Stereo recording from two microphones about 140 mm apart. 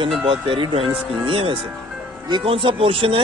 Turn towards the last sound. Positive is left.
turn(degrees=-40)  # may be behind; listen again after turning